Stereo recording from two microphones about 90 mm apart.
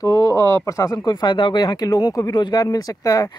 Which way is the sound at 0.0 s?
40° left (ahead or behind).